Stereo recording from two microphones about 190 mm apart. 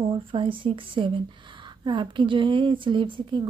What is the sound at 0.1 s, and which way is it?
A woman's voice, 25° right (ahead or behind).